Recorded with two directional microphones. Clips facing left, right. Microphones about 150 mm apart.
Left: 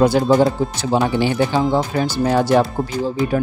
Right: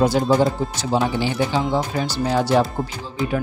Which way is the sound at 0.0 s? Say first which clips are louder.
Left 3 dB; 60° left (ahead or behind).